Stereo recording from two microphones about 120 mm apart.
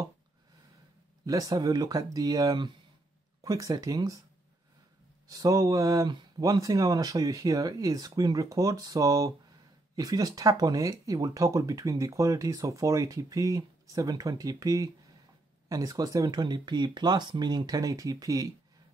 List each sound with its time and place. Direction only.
1.2 s speech: 30° right (ahead or behind)
5.3 s speech: 30° right (ahead or behind)